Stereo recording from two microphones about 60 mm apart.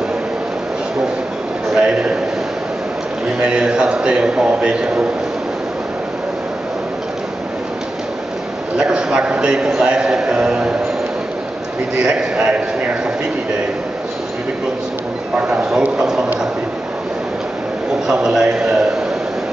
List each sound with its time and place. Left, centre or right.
1.8 s a man's voice: centre
3.3 s a man's voice: centre
8.7 s a man's voice: centre
12.0 s a man's voice: centre
15.4 s a man's voice: centre
18.0 s a man's voice: centre